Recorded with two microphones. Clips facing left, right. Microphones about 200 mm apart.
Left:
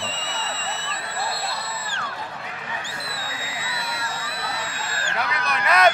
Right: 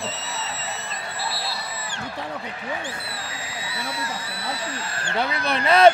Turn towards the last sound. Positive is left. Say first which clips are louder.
# right 3 dB
turn(degrees=-30)  # may be behind; listen again after turning